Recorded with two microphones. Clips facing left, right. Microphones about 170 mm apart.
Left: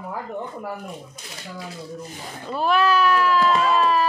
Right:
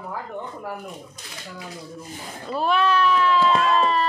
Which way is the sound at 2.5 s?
Centre (ahead or behind).